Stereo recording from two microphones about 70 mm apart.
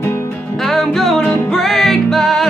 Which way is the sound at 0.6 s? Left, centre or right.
Centre.